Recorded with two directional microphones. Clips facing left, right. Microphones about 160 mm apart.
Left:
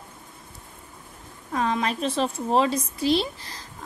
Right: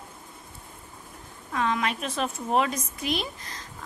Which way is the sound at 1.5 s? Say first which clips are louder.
Left 2 dB; 35° left (ahead or behind).